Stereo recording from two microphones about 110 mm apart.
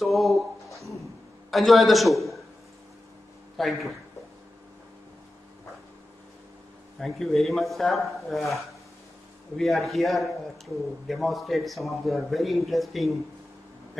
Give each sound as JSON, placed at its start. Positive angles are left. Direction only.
{"t": 0.0, "sound": "a sound", "side_deg": 0}
{"t": 1.5, "sound": "a man's voice", "side_deg": 0}
{"t": 3.5, "sound": "a man's voice", "side_deg": 0}
{"t": 7.0, "sound": "a man's voice", "side_deg": 0}